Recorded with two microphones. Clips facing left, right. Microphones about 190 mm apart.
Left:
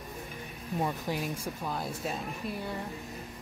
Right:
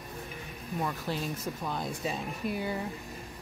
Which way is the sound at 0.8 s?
15° left (ahead or behind).